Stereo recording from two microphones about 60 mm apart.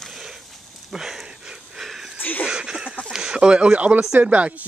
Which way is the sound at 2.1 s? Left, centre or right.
Left.